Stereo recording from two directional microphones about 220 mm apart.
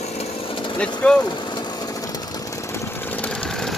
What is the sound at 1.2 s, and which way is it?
Engine, 20° left (ahead or behind).